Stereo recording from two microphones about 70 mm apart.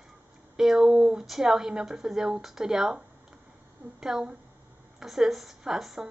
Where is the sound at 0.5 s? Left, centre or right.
Centre.